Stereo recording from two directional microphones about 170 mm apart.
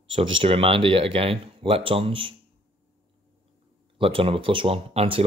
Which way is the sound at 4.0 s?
30° right (ahead or behind).